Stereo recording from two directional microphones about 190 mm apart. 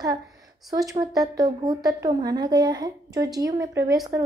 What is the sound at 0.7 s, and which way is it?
A woman's voice, 20° right (ahead or behind).